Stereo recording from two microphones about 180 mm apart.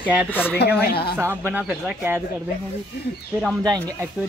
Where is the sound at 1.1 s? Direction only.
10° right (ahead or behind).